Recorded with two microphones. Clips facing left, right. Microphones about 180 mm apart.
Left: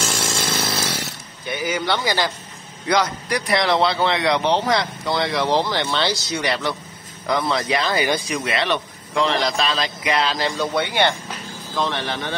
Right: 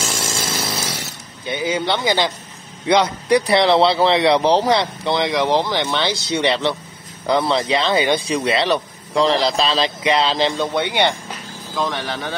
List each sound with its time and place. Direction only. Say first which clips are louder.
0.0 s chainsaw: even; centre (ahead or behind)
1.4 s speech: right 3 dB; 25° right (ahead or behind)
6.4 s speech: right 6 dB; 25° right (ahead or behind)
11.7 s speech: right 1 dB; 10° right (ahead or behind)